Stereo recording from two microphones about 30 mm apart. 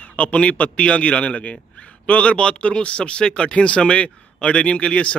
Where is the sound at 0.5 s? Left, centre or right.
Left.